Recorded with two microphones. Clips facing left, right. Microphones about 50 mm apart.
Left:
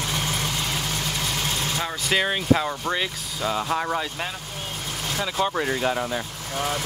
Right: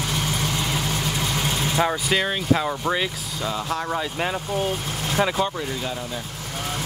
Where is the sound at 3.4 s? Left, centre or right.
Centre.